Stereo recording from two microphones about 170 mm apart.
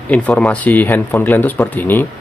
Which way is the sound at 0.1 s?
5° left (ahead or behind).